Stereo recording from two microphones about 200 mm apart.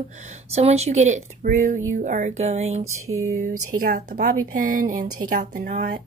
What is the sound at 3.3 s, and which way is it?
Speech, 45° right (ahead or behind).